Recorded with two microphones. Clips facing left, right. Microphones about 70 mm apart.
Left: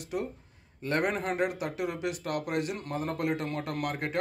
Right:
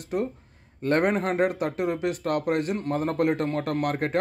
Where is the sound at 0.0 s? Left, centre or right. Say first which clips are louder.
Right 6 dB; right.